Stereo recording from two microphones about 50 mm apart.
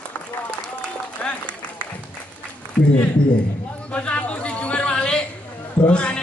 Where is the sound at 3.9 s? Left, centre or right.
Left.